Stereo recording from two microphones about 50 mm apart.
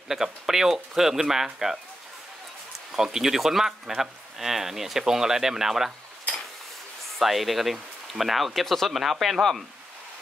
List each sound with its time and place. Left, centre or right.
0.1 s speech: centre
2.9 s speech: centre
7.2 s speech: centre